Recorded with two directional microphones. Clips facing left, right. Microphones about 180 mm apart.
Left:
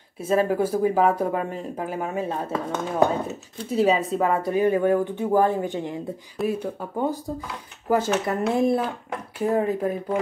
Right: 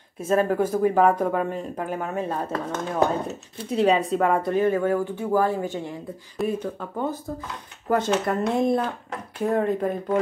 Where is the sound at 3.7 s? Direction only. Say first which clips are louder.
Even; 5° left (ahead or behind).